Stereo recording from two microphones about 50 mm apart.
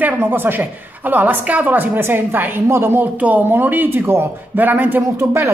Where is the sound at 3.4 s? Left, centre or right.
Right.